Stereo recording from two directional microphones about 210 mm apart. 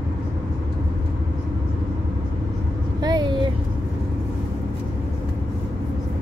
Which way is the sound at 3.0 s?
20° right (ahead or behind).